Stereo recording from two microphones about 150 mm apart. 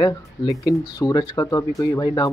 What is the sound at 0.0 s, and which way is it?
Speech, 25° left (ahead or behind).